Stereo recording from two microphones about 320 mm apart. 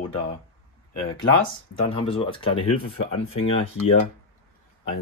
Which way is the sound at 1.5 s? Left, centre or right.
Centre.